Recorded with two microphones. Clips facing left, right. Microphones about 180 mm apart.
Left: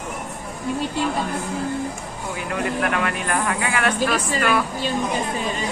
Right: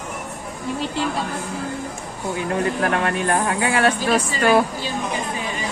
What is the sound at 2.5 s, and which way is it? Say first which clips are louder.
Speech: right 1 dB; 35° right (ahead or behind).